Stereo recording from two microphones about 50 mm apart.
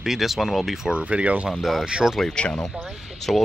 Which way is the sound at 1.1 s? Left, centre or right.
Right.